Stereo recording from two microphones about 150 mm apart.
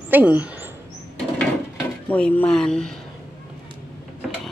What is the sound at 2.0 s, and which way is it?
Speech, 10° left (ahead or behind).